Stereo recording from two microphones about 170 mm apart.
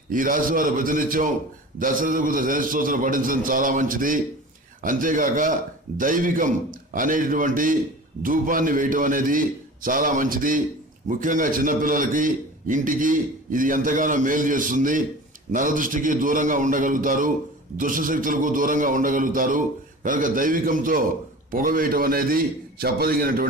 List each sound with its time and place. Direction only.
0.1 s a man's voice: 55° right (ahead or behind)